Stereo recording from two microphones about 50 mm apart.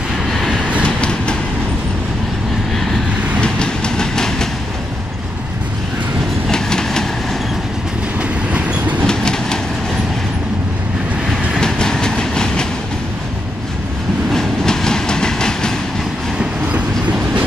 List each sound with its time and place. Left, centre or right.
0.3 s train: centre
0.8 s train: left
3.3 s train: centre
6.5 s train: centre
8.2 s train: right
9.0 s train: centre
11.6 s train: centre
14.3 s train: centre
16.3 s train: right